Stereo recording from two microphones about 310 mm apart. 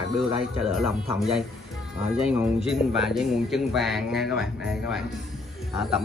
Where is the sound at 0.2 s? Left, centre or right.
Centre.